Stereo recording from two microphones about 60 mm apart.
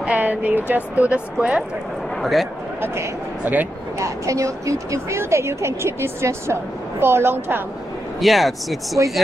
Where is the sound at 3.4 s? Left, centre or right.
Right.